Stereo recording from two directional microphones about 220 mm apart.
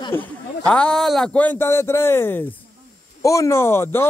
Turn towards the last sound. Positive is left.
turn(degrees=10)  # may be behind; listen again after turning